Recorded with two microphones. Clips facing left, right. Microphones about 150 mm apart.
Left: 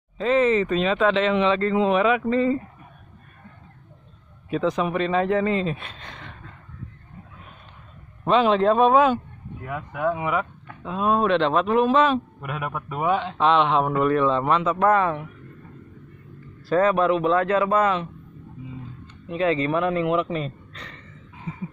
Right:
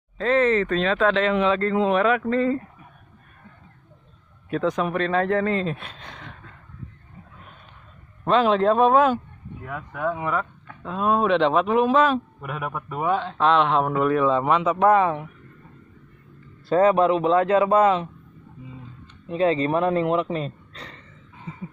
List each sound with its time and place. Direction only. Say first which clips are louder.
0.2 s a man's voice: even; 5° left (ahead or behind)
4.5 s a man's voice: even; centre (ahead or behind)
5.9 s a sound: even; 10° right (ahead or behind)
8.2 s a man's voice: even; centre (ahead or behind)
11.2 s a man's voice: right 1 dB; 10° right (ahead or behind)
16.6 s a man's voice: right 2 dB; 25° right (ahead or behind)
19.2 s speech: right 1 dB; 30° right (ahead or behind)